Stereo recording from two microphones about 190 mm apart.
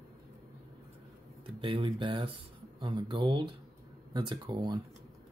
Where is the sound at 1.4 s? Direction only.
25° right (ahead or behind).